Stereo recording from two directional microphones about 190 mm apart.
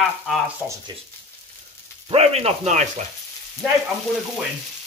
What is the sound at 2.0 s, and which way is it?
Speech, 30° right (ahead or behind).